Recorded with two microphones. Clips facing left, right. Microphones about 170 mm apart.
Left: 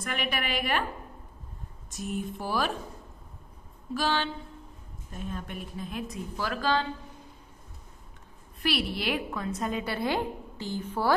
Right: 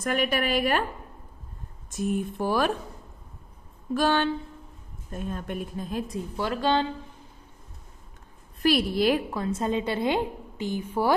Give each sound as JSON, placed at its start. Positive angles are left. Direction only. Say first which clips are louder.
{"t": 0.0, "sound": "a woman's voice", "louder": "right 7 dB", "side_deg": -40}
{"t": 1.9, "sound": "a woman's voice", "louder": "right 6 dB", "side_deg": -55}
{"t": 3.9, "sound": "a woman's voice", "louder": "right 6 dB", "side_deg": -50}
{"t": 8.6, "sound": "a woman's voice", "louder": "right 7 dB", "side_deg": -45}